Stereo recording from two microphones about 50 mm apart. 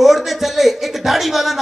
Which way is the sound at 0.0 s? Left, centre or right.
Centre.